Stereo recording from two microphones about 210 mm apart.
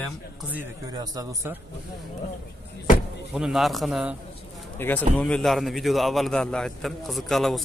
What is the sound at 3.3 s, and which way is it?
A man's voice, centre (ahead or behind).